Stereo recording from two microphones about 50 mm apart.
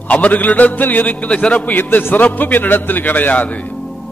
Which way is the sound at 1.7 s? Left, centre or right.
Left.